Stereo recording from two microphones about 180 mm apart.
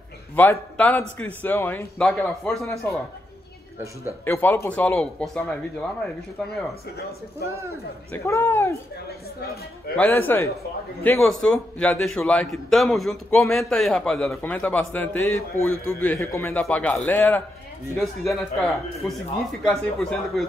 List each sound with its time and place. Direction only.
0.4 s a man's voice: 10° left (ahead or behind)
4.2 s a man's voice: 10° left (ahead or behind)
7.0 s speech: 60° left (ahead or behind)
8.1 s a man's voice: 15° left (ahead or behind)
9.9 s a man's voice: 10° left (ahead or behind)